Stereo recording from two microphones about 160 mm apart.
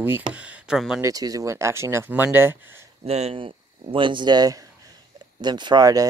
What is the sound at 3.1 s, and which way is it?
Speech, 40° right (ahead or behind).